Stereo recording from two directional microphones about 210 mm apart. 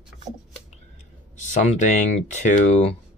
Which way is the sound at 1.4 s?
35° left (ahead or behind).